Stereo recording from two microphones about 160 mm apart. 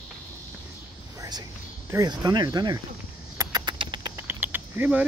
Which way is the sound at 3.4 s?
25° right (ahead or behind).